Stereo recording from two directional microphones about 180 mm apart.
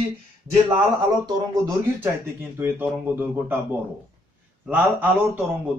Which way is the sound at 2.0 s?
15° right (ahead or behind).